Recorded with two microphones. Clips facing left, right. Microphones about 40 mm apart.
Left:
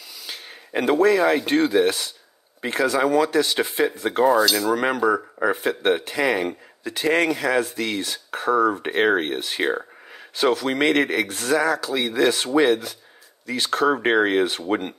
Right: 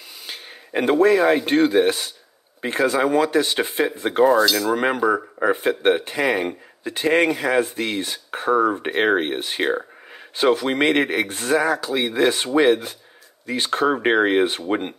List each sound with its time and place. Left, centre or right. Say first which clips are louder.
0.3 s speech: right 1 dB; centre
4.2 s cutlery: right 2 dB; centre
4.8 s speech: right 1 dB; centre
5.6 s speech: right 2 dB; right
6.8 s speech: right 2 dB; right
7.5 s speech: right 2 dB; right
9.6 s a sound: right 2 dB; centre
10.3 s speech: right 2 dB; right